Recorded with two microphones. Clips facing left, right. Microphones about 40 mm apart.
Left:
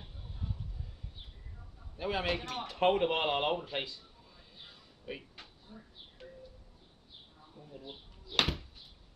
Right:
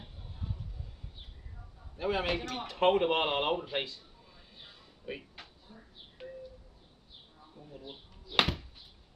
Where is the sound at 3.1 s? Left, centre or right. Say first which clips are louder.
Right 2 dB; centre.